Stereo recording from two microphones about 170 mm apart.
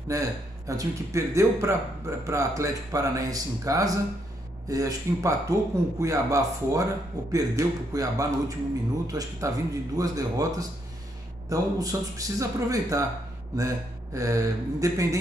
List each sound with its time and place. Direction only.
0.1 s a man's voice: 20° right (ahead or behind)